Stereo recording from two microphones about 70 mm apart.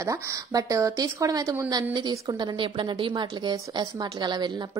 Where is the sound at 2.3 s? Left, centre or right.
Right.